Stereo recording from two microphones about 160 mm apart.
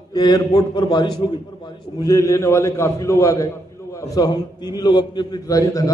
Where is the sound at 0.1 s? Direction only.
25° left (ahead or behind).